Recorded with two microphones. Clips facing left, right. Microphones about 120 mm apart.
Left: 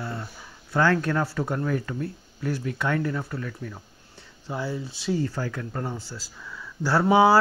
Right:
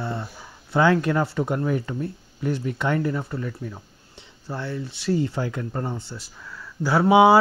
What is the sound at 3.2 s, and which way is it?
Speech, 20° right (ahead or behind).